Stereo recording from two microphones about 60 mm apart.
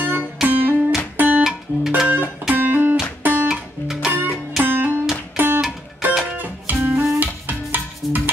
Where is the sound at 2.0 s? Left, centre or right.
Right.